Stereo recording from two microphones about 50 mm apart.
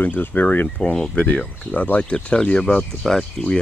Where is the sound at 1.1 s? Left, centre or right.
Left.